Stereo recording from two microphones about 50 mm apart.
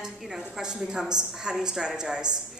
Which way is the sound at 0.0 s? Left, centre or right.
Centre.